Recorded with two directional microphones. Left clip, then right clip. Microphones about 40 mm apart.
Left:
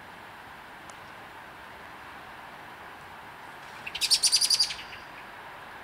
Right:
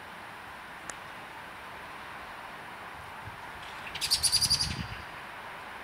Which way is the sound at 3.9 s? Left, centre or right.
Left.